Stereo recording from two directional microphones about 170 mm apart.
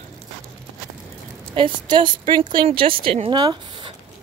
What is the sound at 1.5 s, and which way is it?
A woman's voice, 30° right (ahead or behind).